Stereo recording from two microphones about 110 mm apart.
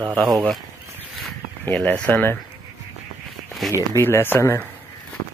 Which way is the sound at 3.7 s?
25° left (ahead or behind).